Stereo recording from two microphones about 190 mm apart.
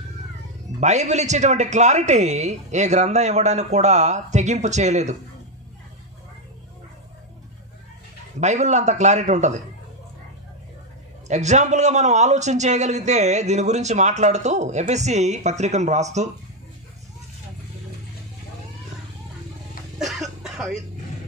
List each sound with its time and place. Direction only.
0.7 s a man's voice: 35° right (ahead or behind)
8.4 s a man's voice: 35° right (ahead or behind)
11.2 s a man's voice: 35° right (ahead or behind)
20.0 s throat clearing: centre (ahead or behind)